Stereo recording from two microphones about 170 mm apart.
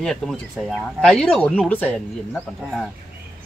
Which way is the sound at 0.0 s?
Centre (ahead or behind).